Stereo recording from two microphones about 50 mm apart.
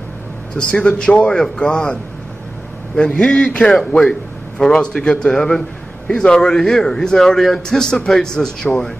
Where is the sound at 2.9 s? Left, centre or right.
Centre.